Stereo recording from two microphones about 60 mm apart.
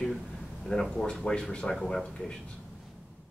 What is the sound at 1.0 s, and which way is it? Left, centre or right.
Speech, centre.